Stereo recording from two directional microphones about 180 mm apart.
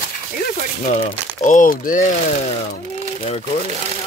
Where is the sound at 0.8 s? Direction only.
40° left (ahead or behind).